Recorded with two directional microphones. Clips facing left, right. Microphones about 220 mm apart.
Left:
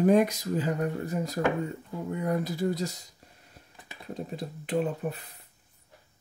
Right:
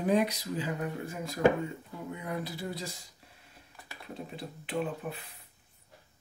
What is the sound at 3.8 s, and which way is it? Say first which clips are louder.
Typing: left 1 dB; 20° left (ahead or behind).